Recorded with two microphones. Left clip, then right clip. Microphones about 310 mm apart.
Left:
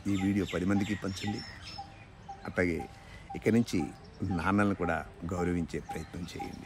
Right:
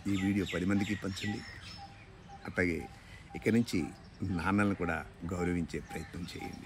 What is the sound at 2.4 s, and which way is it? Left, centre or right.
Speech, centre.